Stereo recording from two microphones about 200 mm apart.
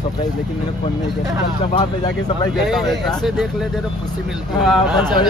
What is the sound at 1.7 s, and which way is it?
Speech, 20° left (ahead or behind).